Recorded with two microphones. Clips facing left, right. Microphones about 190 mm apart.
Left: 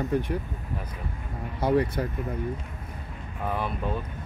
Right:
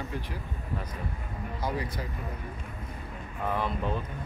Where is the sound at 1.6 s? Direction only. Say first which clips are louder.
Left 10 dB; 60° left (ahead or behind).